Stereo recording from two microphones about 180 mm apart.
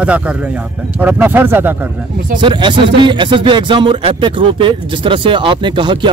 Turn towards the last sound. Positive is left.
turn(degrees=-25)  # may be behind; listen again after turning